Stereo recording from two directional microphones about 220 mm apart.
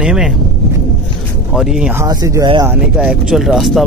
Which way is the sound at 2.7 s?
5° right (ahead or behind).